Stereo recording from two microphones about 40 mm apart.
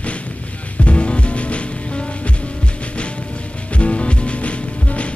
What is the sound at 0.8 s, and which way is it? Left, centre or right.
Music, left.